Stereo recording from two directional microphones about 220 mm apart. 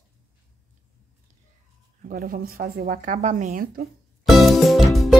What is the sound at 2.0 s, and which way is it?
Speech, 40° right (ahead or behind).